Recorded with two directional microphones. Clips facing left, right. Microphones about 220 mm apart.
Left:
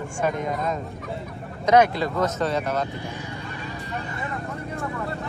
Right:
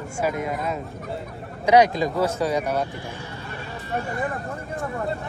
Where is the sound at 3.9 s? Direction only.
50° right (ahead or behind).